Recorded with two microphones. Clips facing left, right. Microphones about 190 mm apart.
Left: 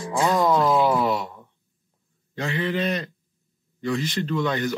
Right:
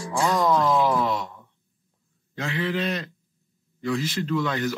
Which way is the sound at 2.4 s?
Centre (ahead or behind).